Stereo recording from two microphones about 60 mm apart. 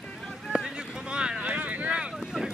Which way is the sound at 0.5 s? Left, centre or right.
Centre.